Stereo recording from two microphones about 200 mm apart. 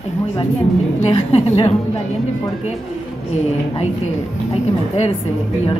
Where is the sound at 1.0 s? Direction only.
30° left (ahead or behind).